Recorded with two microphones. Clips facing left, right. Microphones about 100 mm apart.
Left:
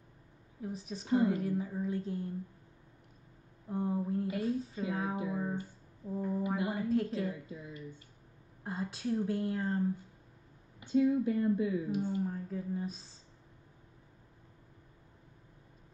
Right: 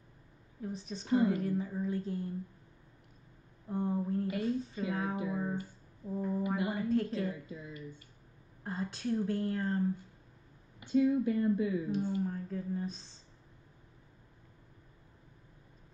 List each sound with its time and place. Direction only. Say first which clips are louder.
0.6 s speech: even; 5° left (ahead or behind)
3.6 s speech: even; centre (ahead or behind)
6.4 s speech: even; 25° left (ahead or behind)
6.7 s speech: even; 5° left (ahead or behind)
8.6 s speech: even; 5° left (ahead or behind)
10.8 s speech: even; 20° left (ahead or behind)